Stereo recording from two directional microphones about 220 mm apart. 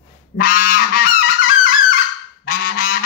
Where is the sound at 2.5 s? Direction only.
40° left (ahead or behind).